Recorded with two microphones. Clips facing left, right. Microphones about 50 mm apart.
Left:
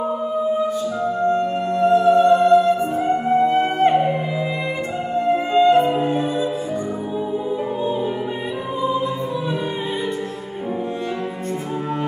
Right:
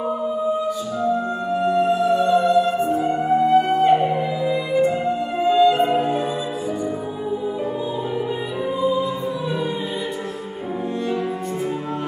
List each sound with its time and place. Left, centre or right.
2.0 s music: left
4.0 s music: centre
5.4 s music: left